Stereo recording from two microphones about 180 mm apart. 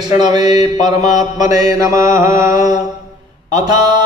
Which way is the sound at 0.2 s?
20° right (ahead or behind).